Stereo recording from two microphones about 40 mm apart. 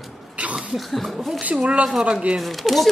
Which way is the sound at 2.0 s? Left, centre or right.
Right.